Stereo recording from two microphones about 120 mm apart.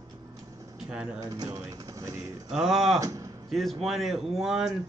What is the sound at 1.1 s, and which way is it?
Speech, 30° right (ahead or behind).